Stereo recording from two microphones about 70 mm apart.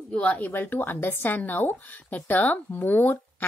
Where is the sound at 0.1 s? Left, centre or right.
Centre.